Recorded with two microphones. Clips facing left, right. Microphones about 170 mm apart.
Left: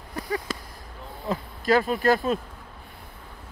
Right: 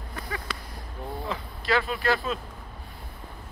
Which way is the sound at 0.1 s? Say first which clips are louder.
Left 6 dB; 40° left (ahead or behind).